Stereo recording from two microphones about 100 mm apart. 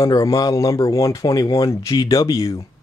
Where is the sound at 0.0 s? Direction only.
35° left (ahead or behind).